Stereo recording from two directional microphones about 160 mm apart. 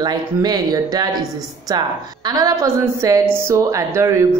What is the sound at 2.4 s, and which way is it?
Speech, 20° right (ahead or behind).